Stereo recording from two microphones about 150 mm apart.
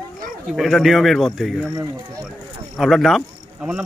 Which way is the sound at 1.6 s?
15° right (ahead or behind).